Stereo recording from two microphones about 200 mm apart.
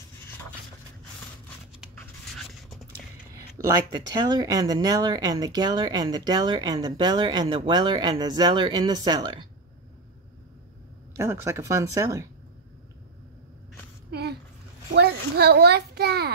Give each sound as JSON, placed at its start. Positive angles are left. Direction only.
{"t": 2.0, "sound": "a sound", "side_deg": 0}
{"t": 3.4, "sound": "speech", "side_deg": -15}
{"t": 11.1, "sound": "speech", "side_deg": -15}
{"t": 14.1, "sound": "a child's voice", "side_deg": -55}